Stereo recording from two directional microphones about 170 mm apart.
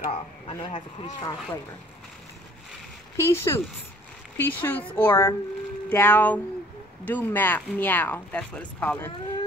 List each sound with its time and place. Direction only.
0.1 s speech: 30° left (ahead or behind)
3.2 s speech: 15° left (ahead or behind)